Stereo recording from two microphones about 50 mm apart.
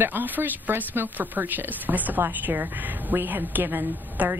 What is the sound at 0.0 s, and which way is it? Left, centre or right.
Speech, right.